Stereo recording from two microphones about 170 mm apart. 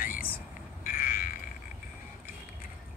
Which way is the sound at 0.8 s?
55° left (ahead or behind).